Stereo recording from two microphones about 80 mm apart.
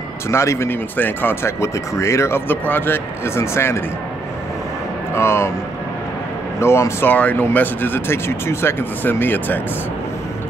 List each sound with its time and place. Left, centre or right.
0.3 s speech: left
0.9 s speech: left
5.1 s speech: left
6.6 s speech: left
7.1 s speech: left